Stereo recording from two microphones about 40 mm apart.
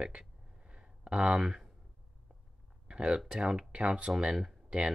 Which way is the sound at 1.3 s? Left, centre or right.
Centre.